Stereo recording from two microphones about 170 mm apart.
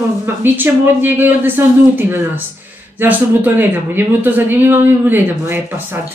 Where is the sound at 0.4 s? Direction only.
10° right (ahead or behind).